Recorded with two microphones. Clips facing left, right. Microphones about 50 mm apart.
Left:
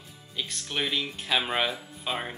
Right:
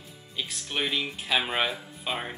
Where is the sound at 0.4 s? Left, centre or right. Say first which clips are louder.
Even; centre.